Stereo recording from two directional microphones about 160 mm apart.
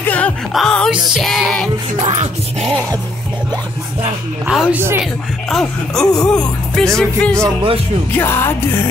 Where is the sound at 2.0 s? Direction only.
40° right (ahead or behind).